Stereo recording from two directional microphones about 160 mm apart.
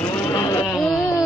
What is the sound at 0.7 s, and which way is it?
Music, centre (ahead or behind).